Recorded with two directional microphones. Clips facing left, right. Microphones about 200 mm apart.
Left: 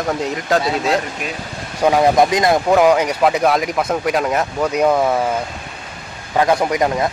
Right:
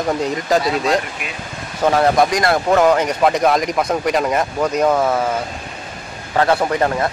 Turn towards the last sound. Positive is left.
turn(degrees=15)  # may be behind; listen again after turning